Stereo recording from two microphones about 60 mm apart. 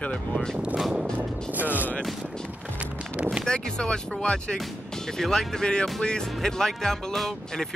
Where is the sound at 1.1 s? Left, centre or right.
Right.